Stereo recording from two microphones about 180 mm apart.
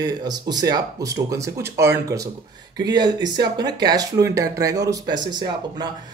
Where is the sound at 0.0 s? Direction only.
20° right (ahead or behind).